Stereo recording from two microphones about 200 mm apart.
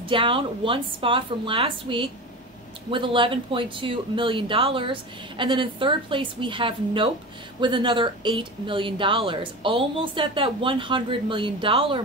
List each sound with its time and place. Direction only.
0.1 s speech: 25° right (ahead or behind)